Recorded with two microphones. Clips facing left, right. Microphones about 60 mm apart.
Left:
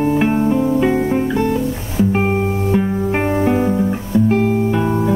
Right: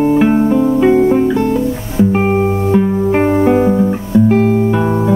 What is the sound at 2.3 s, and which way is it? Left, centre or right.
Music, centre.